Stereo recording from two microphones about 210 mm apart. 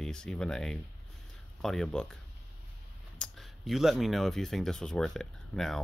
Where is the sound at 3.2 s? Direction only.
Centre (ahead or behind).